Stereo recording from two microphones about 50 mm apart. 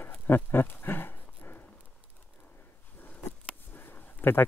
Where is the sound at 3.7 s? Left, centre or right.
Left.